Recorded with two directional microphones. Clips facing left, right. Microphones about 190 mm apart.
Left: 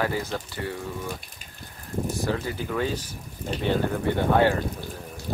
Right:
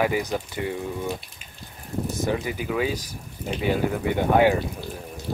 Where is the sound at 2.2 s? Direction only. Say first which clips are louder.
Right 4 dB; 15° right (ahead or behind).